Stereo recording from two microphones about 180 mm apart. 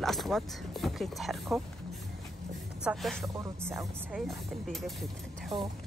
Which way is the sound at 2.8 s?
Centre (ahead or behind).